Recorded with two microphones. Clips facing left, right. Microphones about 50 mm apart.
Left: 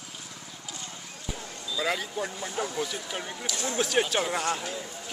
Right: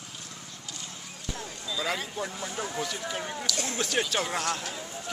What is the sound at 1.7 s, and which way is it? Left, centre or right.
Speech, centre.